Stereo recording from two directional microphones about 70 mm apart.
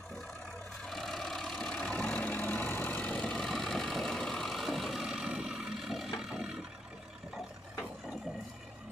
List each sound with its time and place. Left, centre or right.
0.8 s vehicle: centre
3.3 s vehicle: centre